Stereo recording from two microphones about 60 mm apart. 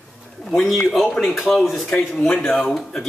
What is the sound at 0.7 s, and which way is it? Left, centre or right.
Speech, centre.